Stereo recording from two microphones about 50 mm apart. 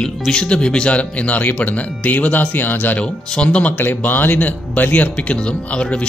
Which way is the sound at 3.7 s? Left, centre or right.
Left.